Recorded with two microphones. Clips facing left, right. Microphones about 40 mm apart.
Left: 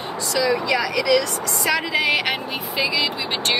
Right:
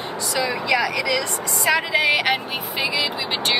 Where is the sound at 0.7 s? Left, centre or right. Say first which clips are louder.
Right 1 dB; right.